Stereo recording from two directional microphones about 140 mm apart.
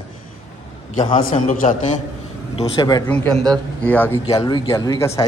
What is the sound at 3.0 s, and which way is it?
A man's voice, 10° left (ahead or behind).